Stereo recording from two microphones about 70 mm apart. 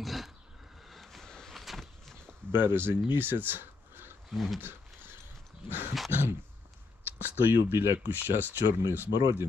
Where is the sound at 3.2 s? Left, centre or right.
Right.